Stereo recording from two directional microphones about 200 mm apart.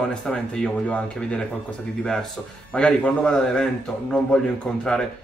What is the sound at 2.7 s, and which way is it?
Speech, 5° left (ahead or behind).